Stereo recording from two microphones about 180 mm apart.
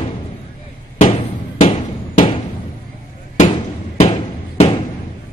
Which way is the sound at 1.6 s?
40° left (ahead or behind).